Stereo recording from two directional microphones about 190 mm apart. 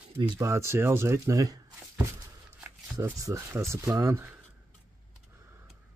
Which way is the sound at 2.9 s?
15° right (ahead or behind).